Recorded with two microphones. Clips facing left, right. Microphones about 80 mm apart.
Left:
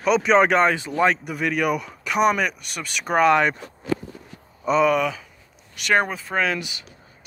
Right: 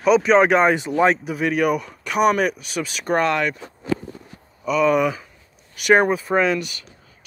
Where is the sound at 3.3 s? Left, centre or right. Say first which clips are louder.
Left 4 dB; left.